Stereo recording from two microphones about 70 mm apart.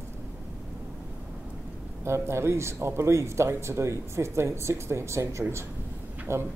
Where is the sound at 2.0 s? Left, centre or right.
Right.